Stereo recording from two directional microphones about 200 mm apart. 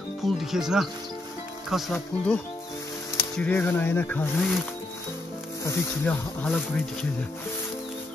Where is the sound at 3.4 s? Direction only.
10° left (ahead or behind).